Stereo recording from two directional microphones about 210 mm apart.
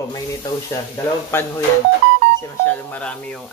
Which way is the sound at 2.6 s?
5° left (ahead or behind).